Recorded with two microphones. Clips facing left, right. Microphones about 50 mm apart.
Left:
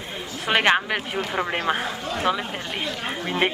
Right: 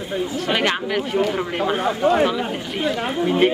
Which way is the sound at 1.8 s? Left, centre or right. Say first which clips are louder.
Right 11 dB; centre.